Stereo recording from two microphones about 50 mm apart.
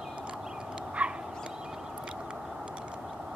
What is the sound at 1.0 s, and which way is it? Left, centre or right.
Dog, right.